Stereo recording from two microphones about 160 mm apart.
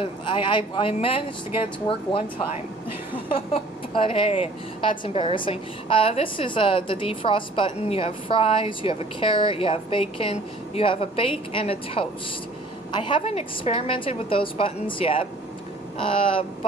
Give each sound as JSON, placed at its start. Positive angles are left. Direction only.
{"t": 0.0, "sound": "a woman's voice", "side_deg": 30}